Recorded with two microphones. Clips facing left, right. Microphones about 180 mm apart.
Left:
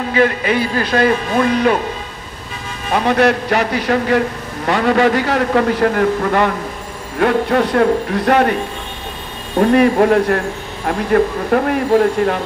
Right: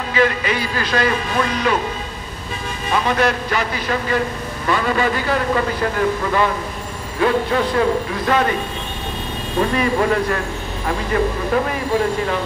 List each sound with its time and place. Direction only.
0.1 s speech: 55° left (ahead or behind)
2.9 s a man's voice: 60° left (ahead or behind)
9.6 s speech: 60° left (ahead or behind)